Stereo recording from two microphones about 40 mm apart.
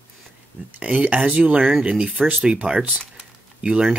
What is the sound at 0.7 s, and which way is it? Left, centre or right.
Speech, right.